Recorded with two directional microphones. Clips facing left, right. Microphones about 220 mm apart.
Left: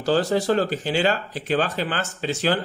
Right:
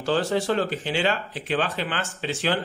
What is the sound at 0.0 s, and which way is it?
Speech, 40° left (ahead or behind).